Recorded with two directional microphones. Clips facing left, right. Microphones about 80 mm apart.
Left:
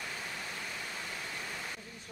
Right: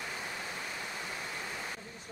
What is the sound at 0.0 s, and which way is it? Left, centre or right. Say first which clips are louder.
Waterfall: right 1 dB; centre.